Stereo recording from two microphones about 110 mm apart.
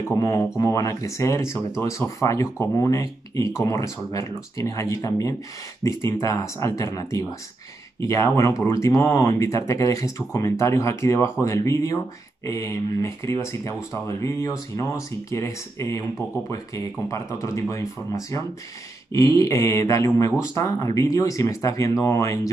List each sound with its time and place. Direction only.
0.2 s speech: 30° left (ahead or behind)
19.1 s speech: 30° left (ahead or behind)